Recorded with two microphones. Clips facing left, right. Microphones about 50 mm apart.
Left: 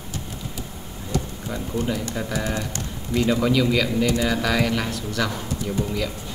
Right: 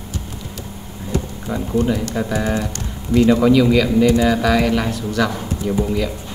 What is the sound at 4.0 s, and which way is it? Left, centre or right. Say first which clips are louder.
Speech: right 7 dB; right.